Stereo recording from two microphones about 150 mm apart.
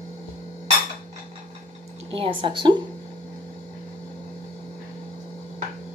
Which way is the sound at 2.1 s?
35° right (ahead or behind).